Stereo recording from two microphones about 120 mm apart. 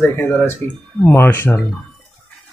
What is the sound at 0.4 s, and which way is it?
Speech, 10° left (ahead or behind).